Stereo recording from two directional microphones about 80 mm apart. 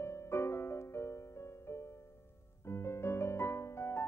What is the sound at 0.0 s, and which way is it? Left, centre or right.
Music, left.